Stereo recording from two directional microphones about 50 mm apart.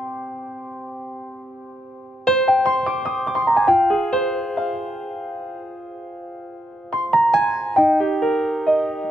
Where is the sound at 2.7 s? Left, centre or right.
Centre.